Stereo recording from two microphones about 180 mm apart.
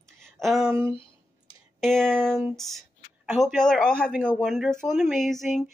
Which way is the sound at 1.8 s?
5° left (ahead or behind).